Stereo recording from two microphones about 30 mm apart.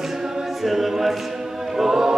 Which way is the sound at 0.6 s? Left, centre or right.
Centre.